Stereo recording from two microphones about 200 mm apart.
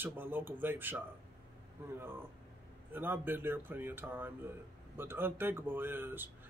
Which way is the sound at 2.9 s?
10° right (ahead or behind).